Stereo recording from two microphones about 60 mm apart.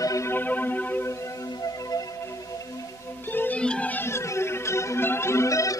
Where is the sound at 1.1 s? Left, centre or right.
Left.